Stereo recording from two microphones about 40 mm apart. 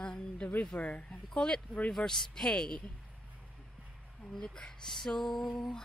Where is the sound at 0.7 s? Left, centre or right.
Left.